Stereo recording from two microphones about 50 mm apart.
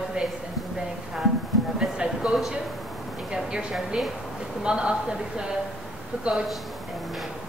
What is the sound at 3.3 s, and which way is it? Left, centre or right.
A man's voice, centre.